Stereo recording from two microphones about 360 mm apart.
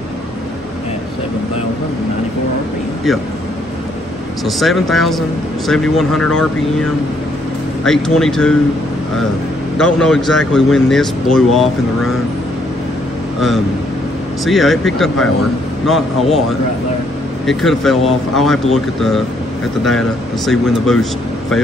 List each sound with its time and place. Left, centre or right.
4.5 s a man's voice: centre
9.8 s a man's voice: centre
14.4 s a man's voice: centre
17.5 s a man's voice: centre